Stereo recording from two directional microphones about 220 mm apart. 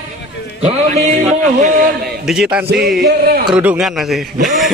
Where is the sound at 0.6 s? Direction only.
30° right (ahead or behind).